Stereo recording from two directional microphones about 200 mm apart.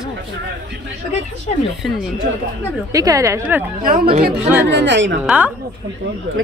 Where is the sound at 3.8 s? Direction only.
45° right (ahead or behind).